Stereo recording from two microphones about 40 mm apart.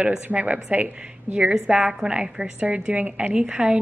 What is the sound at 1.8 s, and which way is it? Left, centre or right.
Speech, centre.